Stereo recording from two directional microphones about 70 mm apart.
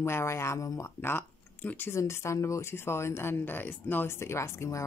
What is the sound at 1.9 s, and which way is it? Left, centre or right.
Speech, left.